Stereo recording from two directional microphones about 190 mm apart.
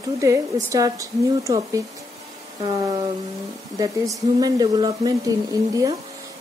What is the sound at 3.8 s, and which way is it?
Speech, 20° right (ahead or behind).